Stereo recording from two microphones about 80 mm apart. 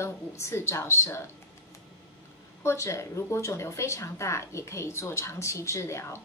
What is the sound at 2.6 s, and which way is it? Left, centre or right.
A woman's voice, left.